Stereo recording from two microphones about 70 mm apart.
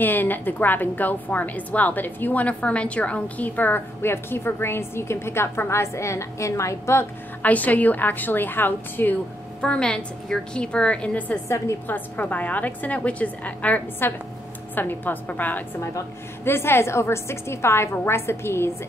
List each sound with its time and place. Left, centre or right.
0.0 s a woman's voice: left
7.4 s a woman's voice: left
9.6 s a woman's voice: centre
11.4 s a woman's voice: left
11.9 s a woman's voice: left
16.4 s a woman's voice: left